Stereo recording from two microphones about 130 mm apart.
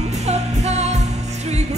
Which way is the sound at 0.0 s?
60° right (ahead or behind).